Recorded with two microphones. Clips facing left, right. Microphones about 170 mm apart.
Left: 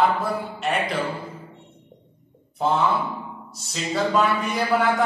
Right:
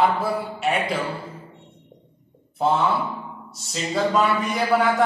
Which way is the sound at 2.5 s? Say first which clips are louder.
Right 1 dB; centre (ahead or behind).